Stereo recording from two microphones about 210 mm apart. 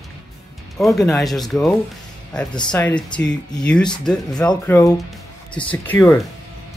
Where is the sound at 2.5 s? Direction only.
20° left (ahead or behind).